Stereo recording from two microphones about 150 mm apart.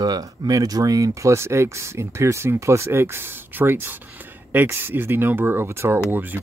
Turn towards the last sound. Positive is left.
turn(degrees=-10)  # may be behind; listen again after turning